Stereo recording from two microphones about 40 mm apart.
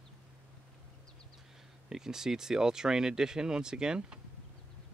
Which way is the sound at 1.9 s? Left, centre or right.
Centre.